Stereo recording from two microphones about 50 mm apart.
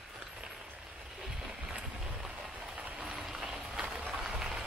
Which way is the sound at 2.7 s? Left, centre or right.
Centre.